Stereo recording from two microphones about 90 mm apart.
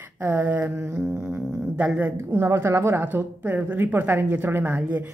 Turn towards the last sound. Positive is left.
turn(degrees=-20)  # may be behind; listen again after turning